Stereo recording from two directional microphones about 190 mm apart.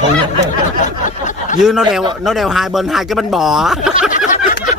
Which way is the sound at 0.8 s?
40° left (ahead or behind).